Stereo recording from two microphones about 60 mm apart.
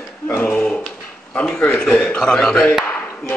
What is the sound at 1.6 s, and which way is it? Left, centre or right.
A man's voice, centre.